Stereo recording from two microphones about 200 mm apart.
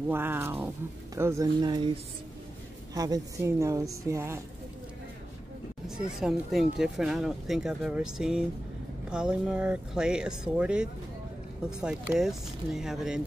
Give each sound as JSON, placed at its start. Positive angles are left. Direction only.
{"t": 0.1, "sound": "a woman's voice", "side_deg": -10}
{"t": 2.9, "sound": "a woman's voice", "side_deg": -20}
{"t": 5.9, "sound": "speech", "side_deg": -5}